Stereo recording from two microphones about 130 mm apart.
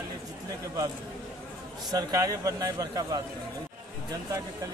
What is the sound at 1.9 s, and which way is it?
A man's voice, 30° right (ahead or behind).